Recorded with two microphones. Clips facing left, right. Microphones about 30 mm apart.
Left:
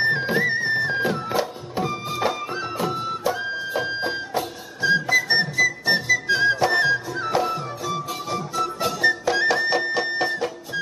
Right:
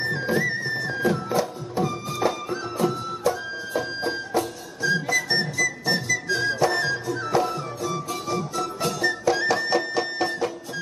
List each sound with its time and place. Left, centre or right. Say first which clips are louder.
0.0 s music: left 3 dB; left; by 10.8 s centre